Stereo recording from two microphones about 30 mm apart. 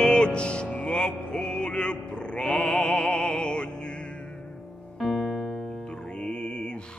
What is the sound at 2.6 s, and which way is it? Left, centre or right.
Opera, left.